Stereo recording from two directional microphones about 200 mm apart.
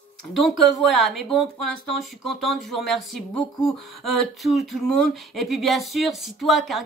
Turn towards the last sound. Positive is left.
turn(degrees=0)  # may be behind; listen again after turning